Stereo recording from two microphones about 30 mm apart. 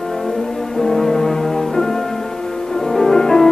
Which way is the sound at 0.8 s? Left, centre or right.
Centre.